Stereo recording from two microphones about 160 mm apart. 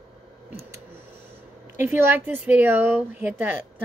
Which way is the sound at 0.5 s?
15° right (ahead or behind).